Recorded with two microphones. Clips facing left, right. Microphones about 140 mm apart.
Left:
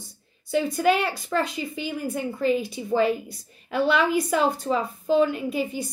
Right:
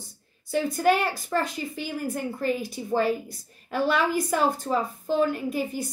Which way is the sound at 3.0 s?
45° right (ahead or behind).